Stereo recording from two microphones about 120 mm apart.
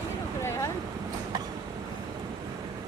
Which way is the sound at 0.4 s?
20° left (ahead or behind).